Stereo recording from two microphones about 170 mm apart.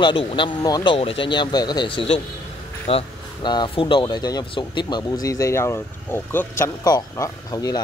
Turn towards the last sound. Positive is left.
turn(degrees=20)  # may be behind; listen again after turning